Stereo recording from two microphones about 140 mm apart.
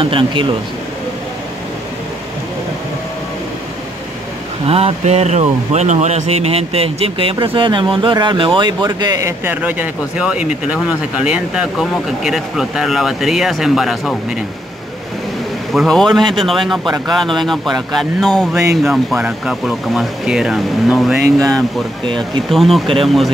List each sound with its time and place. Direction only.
0.0 s speech: 35° right (ahead or behind)
4.6 s speech: 45° right (ahead or behind); by 14.1 s centre (ahead or behind)
15.7 s speech: centre (ahead or behind)